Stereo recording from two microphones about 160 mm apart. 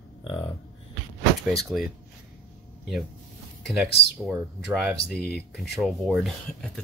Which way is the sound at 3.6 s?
Centre (ahead or behind).